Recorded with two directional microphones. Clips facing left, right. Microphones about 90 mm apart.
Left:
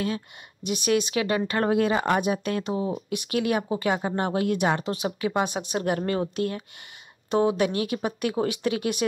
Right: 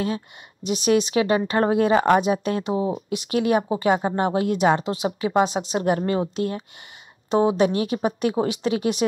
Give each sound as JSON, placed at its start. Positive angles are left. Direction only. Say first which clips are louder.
{"t": 0.7, "sound": "speech", "louder": "right 4 dB", "side_deg": -25}